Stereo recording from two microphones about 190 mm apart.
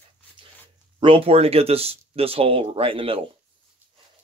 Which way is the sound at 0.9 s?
30° right (ahead or behind).